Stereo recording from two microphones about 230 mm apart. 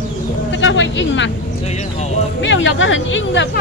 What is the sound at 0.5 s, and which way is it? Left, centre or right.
Speech, left.